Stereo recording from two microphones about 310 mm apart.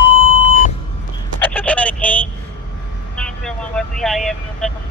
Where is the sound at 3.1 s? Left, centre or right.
Centre.